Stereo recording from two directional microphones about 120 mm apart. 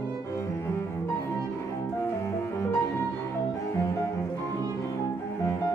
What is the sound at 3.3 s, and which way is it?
Double bass, 25° left (ahead or behind).